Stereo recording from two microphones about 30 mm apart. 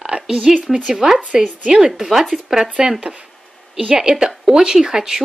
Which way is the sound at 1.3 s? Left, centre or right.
Right.